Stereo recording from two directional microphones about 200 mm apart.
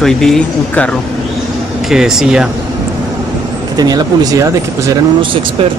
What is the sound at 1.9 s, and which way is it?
Speech, centre (ahead or behind).